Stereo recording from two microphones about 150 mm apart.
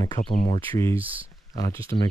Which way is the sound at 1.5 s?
20° left (ahead or behind).